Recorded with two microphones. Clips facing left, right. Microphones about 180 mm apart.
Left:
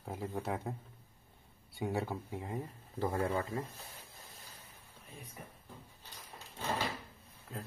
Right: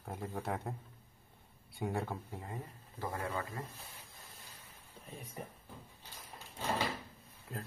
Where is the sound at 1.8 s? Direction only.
Centre (ahead or behind).